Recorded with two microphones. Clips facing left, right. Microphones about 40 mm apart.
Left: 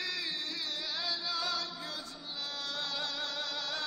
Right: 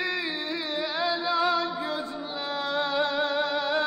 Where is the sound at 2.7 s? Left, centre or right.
Right.